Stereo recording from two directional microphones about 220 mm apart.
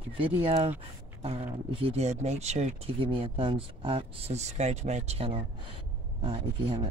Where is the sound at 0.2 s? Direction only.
25° right (ahead or behind).